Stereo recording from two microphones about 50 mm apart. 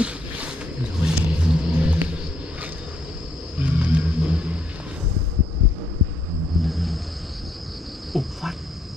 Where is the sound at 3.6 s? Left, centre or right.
Right.